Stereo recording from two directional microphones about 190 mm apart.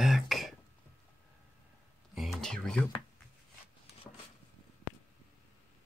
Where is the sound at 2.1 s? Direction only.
Centre (ahead or behind).